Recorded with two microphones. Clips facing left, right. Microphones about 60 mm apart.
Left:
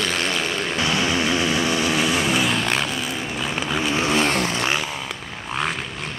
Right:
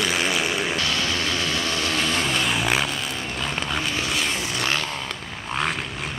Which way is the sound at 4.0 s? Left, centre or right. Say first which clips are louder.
Left 6 dB; left.